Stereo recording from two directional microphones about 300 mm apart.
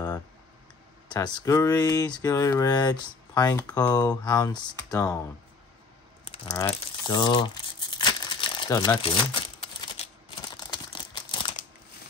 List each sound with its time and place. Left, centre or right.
1.0 s speech: centre
6.2 s a sound: centre
6.6 s speech: centre
10.7 s crumpling: centre